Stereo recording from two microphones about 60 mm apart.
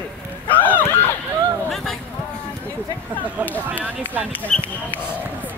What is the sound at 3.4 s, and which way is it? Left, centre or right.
Speech, right.